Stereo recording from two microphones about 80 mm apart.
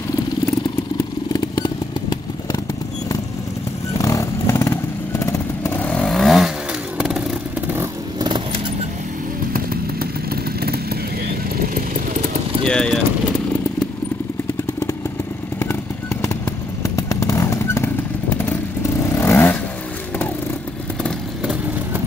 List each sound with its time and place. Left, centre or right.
0.9 s motorcycle: left
4.0 s vehicle: left
5.7 s vehicle: centre
7.0 s motorcycle: centre
12.6 s speech: centre
15.6 s vehicle: left